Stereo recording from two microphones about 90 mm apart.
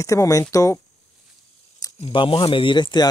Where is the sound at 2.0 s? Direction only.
70° left (ahead or behind).